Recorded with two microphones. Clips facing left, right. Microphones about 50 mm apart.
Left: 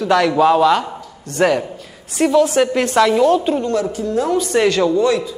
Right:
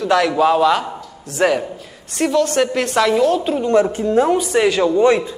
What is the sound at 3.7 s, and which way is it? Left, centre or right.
Speech, right.